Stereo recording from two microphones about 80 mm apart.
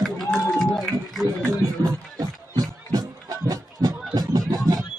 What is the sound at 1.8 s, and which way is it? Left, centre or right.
Music, right.